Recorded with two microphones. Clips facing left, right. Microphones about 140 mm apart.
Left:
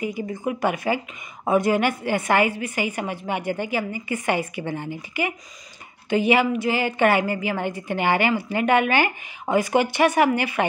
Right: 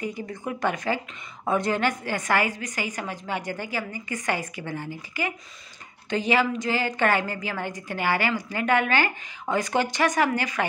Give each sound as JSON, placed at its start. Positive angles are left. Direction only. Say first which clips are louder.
{"t": 0.0, "sound": "a woman's voice", "louder": "left 5 dB", "side_deg": 15}